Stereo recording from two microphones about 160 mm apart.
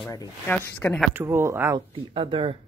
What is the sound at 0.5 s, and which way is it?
Speech, 10° left (ahead or behind).